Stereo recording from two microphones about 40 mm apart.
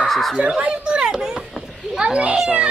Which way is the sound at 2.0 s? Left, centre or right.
Right.